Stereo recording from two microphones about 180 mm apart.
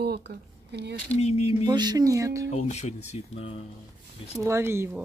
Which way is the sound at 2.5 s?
40° left (ahead or behind).